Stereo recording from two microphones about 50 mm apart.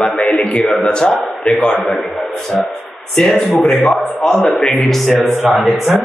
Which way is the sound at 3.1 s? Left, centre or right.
Centre.